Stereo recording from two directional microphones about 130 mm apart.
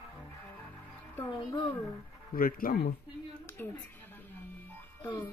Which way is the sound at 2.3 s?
90° left.